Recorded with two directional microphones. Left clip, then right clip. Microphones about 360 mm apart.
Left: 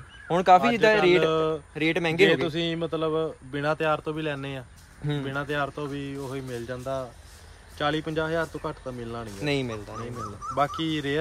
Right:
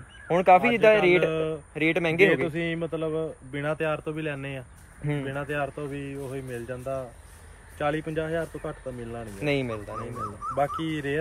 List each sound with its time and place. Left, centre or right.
0.3 s speech: centre
9.4 s speech: centre
10.8 s speech: centre